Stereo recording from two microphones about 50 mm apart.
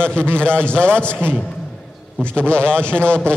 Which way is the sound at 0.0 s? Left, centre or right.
Left.